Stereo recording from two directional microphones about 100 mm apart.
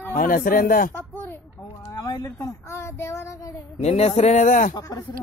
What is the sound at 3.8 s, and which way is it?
Speech, 90° left.